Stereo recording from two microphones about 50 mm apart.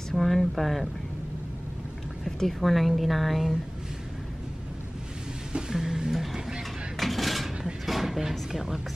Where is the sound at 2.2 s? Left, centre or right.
Centre.